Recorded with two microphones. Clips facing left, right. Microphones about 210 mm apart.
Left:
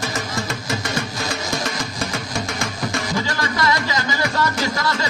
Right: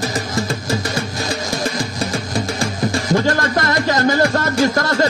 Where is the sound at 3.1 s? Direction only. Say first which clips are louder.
Right 7 dB; 50° right (ahead or behind).